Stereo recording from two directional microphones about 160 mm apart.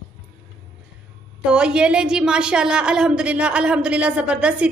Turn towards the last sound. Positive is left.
turn(degrees=-5)  # may be behind; listen again after turning